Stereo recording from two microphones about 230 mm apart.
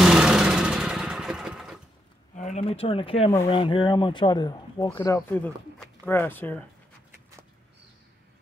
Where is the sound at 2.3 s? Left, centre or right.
Left.